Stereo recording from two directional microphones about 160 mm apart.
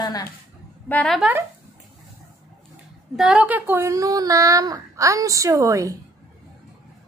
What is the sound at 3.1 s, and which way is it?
Speech, 5° right (ahead or behind).